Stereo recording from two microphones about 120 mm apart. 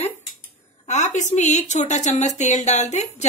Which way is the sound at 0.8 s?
80° left.